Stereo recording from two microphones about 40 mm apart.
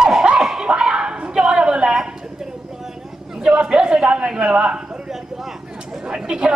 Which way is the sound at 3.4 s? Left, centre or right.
Right.